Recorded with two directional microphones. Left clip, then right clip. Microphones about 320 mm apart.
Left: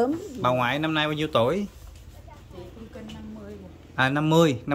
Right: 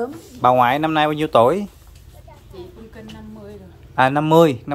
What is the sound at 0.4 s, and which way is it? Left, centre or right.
Speech, centre.